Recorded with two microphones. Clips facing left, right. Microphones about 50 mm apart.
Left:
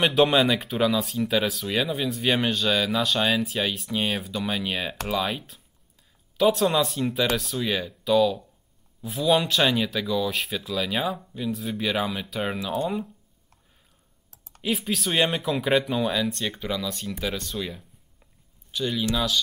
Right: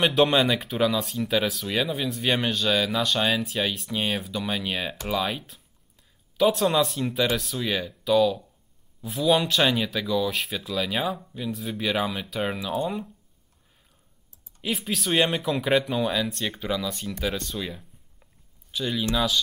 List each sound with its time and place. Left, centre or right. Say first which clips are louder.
0.0 s speech: left 1 dB; centre
14.3 s computer keyboard: left 9 dB; left
14.6 s speech: left 2 dB; centre